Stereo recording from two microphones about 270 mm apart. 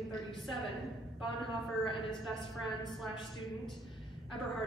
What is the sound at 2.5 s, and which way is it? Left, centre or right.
Speech, centre.